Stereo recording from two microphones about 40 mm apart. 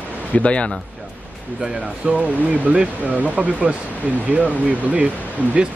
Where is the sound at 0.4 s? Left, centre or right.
Left.